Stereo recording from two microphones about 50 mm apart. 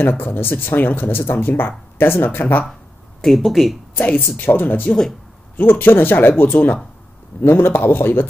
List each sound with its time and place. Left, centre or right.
0.2 s speech: left
3.3 s speech: centre
3.9 s speech: left
7.4 s speech: left